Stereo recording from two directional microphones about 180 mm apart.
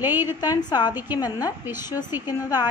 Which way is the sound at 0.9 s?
10° right (ahead or behind).